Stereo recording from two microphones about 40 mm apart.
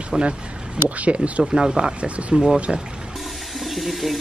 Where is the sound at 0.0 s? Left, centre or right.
Right.